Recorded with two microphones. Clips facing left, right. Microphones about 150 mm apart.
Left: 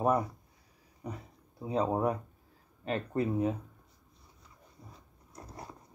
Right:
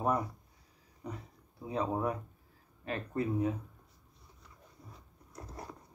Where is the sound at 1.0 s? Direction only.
20° left (ahead or behind).